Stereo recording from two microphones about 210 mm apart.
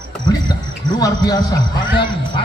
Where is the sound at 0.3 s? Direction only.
20° left (ahead or behind).